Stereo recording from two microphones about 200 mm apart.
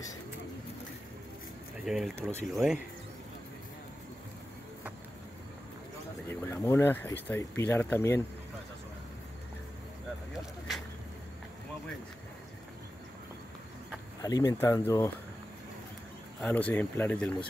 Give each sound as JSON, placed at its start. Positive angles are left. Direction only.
{"t": 1.9, "sound": "speech", "side_deg": 0}
{"t": 6.2, "sound": "speech", "side_deg": 10}
{"t": 14.2, "sound": "speech", "side_deg": 20}
{"t": 16.3, "sound": "speech", "side_deg": 5}